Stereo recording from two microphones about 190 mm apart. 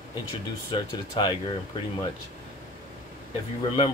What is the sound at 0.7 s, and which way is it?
Speech, 25° left (ahead or behind).